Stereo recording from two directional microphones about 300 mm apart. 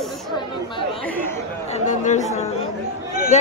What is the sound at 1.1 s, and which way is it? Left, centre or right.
Speech, centre.